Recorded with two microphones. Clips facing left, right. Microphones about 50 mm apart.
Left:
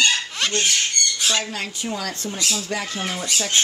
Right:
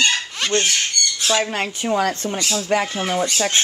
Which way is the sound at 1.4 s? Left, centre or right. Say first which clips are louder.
Right 6 dB; right.